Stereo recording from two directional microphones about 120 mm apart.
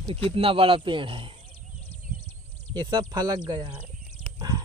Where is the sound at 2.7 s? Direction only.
40° right (ahead or behind).